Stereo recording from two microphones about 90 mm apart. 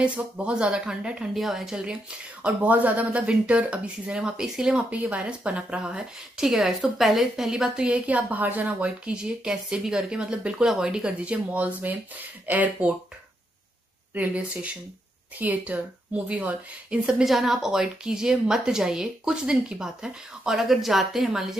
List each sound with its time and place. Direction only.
0.0 s speech: 10° right (ahead or behind)
14.1 s speech: 15° right (ahead or behind)